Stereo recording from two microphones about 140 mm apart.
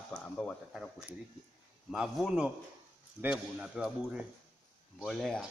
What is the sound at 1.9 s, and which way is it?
Speech, centre (ahead or behind).